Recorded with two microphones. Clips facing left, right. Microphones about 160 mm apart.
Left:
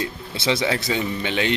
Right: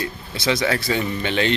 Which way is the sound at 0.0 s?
25° left (ahead or behind).